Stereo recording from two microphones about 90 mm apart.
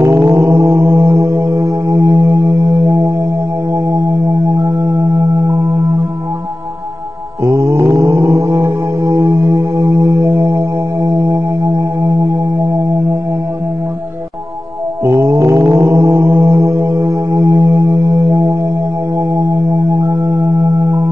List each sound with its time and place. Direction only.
0.0 s music: 35° right (ahead or behind)
0.7 s mantra: 25° right (ahead or behind)
4.1 s music: 30° right (ahead or behind)
7.4 s mantra: 30° right (ahead or behind)
7.9 s music: 30° right (ahead or behind)
15.0 s music: 30° right (ahead or behind)
15.4 s mantra: 30° right (ahead or behind)
19.5 s music: 30° right (ahead or behind)